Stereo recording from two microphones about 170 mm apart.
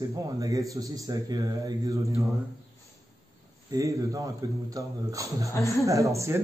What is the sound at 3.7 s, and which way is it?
A man's voice, 20° right (ahead or behind).